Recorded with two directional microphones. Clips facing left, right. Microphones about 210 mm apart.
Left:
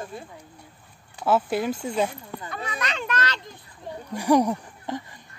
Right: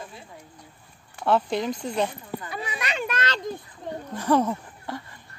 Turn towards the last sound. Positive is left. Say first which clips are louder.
# left 2 dB
turn(degrees=15)  # may be behind; listen again after turning